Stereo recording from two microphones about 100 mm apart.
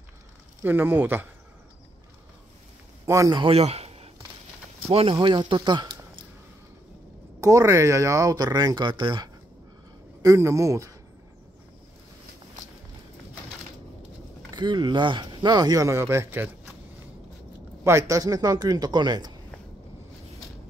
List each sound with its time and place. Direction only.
0.7 s speech: 20° right (ahead or behind)
3.1 s speech: 35° right (ahead or behind)
3.4 s a sound: 90° right
4.9 s speech: 75° right (ahead or behind)
5.2 s speech: 50° right (ahead or behind)
7.3 s speech: 35° right (ahead or behind); by 9.3 s 50° right (ahead or behind)
10.2 s speech: 35° right (ahead or behind)
14.5 s speech: 50° right (ahead or behind); by 16.4 s 25° right (ahead or behind)
17.8 s speech: 30° right (ahead or behind); by 19.3 s 45° right (ahead or behind)